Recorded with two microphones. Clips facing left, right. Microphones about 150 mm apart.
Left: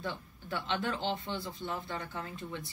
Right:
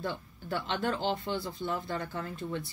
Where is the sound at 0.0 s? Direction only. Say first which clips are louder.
Right 3 dB; 45° right (ahead or behind).